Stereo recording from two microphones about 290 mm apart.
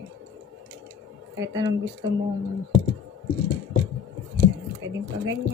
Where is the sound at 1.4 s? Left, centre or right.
Centre.